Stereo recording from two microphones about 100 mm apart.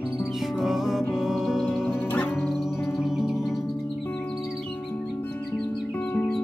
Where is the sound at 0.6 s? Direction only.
5° right (ahead or behind).